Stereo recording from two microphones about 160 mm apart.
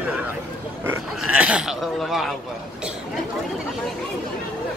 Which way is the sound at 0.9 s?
10° right (ahead or behind).